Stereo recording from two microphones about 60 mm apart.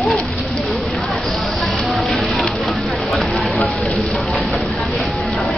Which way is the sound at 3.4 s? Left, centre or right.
Centre.